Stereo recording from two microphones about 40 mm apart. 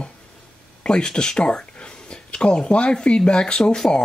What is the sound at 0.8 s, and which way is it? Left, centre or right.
Speech, left.